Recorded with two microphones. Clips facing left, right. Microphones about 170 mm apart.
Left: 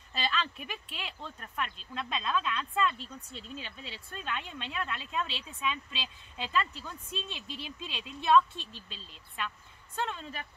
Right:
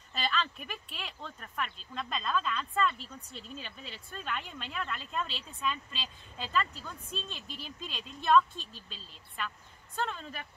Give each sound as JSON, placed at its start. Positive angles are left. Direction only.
{"t": 0.1, "sound": "speech", "side_deg": 0}